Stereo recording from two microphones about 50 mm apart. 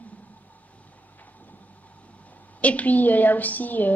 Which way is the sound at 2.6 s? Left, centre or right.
Left.